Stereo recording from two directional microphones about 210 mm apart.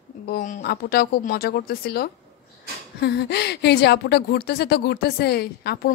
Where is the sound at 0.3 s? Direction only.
40° left (ahead or behind).